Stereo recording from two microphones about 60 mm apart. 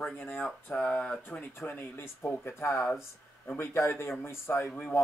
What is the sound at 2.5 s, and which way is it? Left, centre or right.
A man's voice, left.